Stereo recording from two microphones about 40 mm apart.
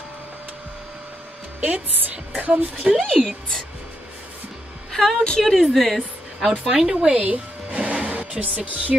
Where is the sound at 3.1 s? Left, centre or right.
Centre.